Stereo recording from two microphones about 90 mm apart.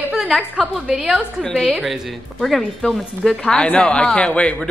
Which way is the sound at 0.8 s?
5° right (ahead or behind).